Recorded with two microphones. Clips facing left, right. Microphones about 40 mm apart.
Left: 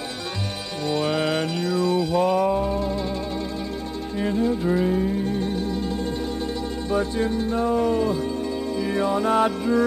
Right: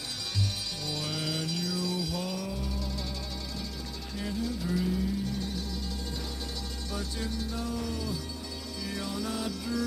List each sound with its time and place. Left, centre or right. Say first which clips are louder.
0.8 s mantra: left 13 dB; left
4.2 s music: left 11 dB; left